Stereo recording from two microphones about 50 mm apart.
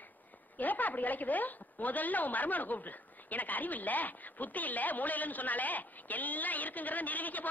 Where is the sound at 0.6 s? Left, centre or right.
Left.